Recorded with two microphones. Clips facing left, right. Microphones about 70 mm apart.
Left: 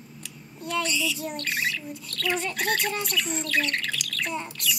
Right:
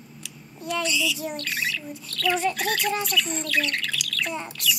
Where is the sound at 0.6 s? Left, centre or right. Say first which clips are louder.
Right 1 dB; left.